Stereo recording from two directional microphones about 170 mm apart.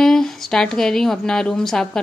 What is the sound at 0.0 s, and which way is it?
Speech, centre (ahead or behind).